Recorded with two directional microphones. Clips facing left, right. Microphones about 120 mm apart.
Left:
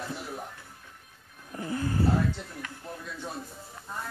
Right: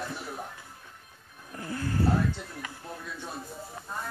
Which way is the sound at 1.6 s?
15° left (ahead or behind).